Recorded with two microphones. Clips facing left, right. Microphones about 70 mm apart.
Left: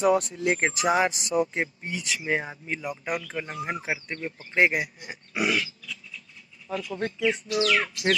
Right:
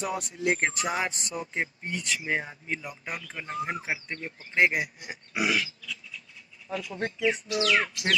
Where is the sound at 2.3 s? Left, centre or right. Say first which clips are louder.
Left 4 dB; centre.